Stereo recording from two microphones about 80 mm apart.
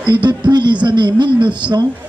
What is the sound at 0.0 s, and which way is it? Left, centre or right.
A man's voice, right.